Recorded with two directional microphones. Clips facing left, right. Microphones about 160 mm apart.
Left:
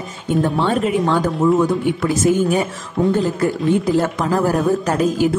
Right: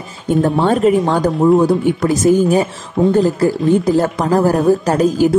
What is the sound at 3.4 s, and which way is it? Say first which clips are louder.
A woman's voice: right 4 dB; 40° right (ahead or behind).